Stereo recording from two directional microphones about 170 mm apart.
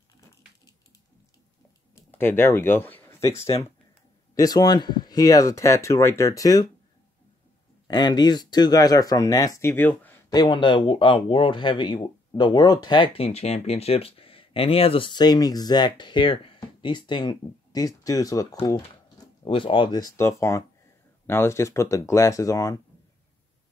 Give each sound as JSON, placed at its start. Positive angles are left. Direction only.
{"t": 2.0, "sound": "speech", "side_deg": 10}
{"t": 4.4, "sound": "speech", "side_deg": 20}
{"t": 7.9, "sound": "speech", "side_deg": 25}
{"t": 10.3, "sound": "speech", "side_deg": 25}